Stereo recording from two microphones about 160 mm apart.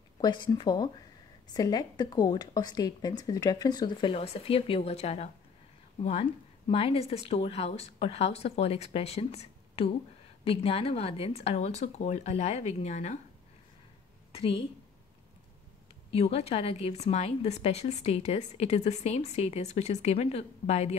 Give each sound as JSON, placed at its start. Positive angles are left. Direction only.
{"t": 0.2, "sound": "a woman's voice", "side_deg": 25}
{"t": 14.3, "sound": "a woman's voice", "side_deg": 35}
{"t": 16.2, "sound": "a woman's voice", "side_deg": 40}